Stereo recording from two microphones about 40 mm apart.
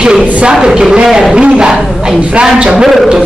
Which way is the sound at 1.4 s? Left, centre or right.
Right.